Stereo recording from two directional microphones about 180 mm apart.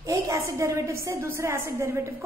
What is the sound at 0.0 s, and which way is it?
A woman's voice, 20° right (ahead or behind).